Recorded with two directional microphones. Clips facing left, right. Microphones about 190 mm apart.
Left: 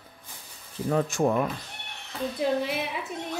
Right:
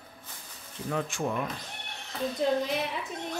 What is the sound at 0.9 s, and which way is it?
Speech, 45° left (ahead or behind).